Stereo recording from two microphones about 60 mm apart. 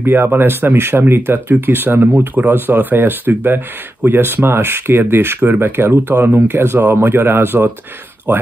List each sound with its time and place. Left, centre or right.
0.0 s speech: right